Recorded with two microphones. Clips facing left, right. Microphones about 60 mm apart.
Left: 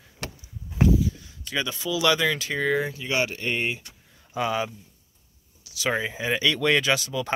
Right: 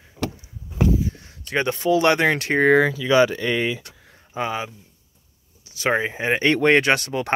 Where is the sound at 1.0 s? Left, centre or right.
Right.